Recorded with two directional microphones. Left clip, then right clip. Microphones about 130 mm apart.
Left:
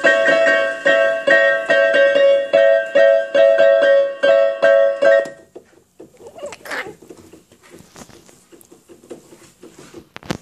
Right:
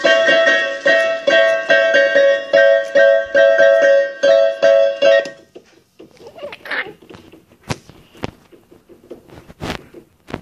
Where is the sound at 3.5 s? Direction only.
30° left (ahead or behind).